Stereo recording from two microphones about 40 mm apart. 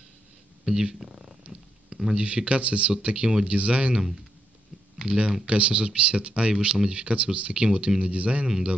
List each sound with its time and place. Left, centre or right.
0.7 s speech: centre
1.5 s a sound: centre
2.2 s speech: right
3.9 s speech: centre
4.9 s speech: right